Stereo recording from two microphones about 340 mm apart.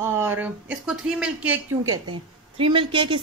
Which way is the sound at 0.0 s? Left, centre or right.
Centre.